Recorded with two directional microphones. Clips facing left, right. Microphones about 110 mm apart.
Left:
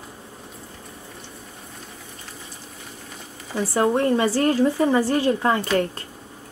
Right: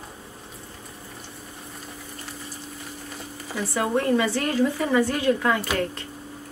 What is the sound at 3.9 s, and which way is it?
Speech, 30° left (ahead or behind).